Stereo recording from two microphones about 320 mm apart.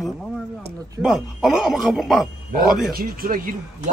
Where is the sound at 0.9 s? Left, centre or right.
Centre.